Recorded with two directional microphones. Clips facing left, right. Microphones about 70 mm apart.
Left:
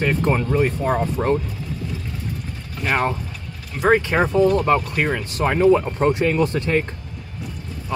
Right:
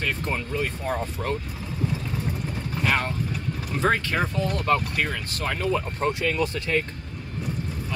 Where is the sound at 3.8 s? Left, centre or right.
Centre.